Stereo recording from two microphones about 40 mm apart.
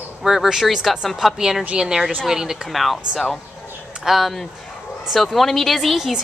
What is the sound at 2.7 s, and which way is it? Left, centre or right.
Speech, centre.